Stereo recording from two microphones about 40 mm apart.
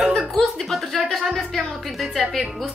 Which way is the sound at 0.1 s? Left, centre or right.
Centre.